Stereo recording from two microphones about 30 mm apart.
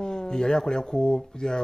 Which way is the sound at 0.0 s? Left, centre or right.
Left.